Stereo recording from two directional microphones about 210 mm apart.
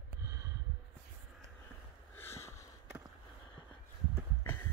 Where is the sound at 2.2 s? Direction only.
10° left (ahead or behind).